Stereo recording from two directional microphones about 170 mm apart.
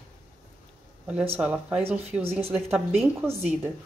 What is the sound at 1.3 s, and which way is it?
Speech, 10° right (ahead or behind).